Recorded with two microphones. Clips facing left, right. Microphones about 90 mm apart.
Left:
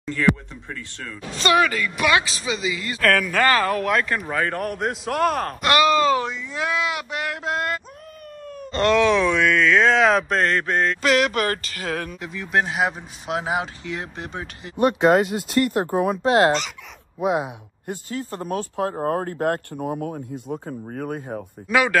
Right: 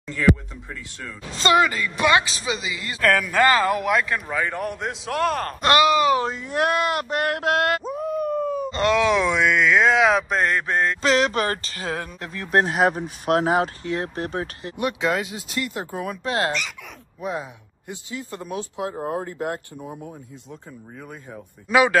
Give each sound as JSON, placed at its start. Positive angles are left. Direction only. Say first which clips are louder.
{"t": 1.4, "sound": "speech", "louder": "even", "side_deg": -25}
{"t": 4.1, "sound": "a man's voice", "louder": "left 1 dB", "side_deg": 0}
{"t": 5.6, "sound": "speech", "louder": "right 1 dB", "side_deg": -30}
{"t": 5.9, "sound": "speech", "louder": "even", "side_deg": -15}
{"t": 6.5, "sound": "a sound", "louder": "right 4 dB", "side_deg": -60}
{"t": 7.9, "sound": "speech", "louder": "right 16 dB", "side_deg": -5}
{"t": 12.4, "sound": "speech", "louder": "right 2 dB", "side_deg": -45}
{"t": 12.7, "sound": "a man's voice", "louder": "right 3 dB", "side_deg": 0}
{"t": 13.0, "sound": "speech", "louder": "right 6 dB", "side_deg": -50}
{"t": 14.8, "sound": "speech", "louder": "left 7 dB", "side_deg": 45}
{"t": 16.1, "sound": "speech", "louder": "left 6 dB", "side_deg": 35}
{"t": 17.2, "sound": "speech", "louder": "left 7 dB", "side_deg": 20}
{"t": 17.8, "sound": "speech", "louder": "left 4 dB", "side_deg": 40}
{"t": 21.6, "sound": "speech", "louder": "right 2 dB", "side_deg": -20}